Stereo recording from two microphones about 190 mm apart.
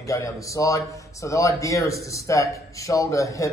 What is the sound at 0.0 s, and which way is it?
Speech, 15° left (ahead or behind).